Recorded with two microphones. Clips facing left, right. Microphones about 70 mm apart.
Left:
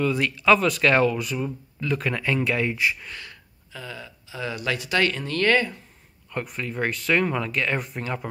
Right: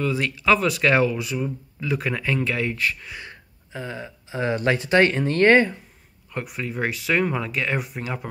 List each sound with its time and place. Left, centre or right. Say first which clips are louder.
0.0 s speech: left 1 dB; centre
3.2 s speech: right 3 dB; right
6.3 s speech: even; centre